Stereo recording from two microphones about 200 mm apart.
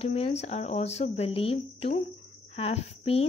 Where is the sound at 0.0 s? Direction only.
30° left (ahead or behind).